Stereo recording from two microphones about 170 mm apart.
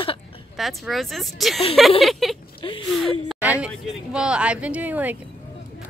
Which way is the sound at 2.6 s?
30° left (ahead or behind).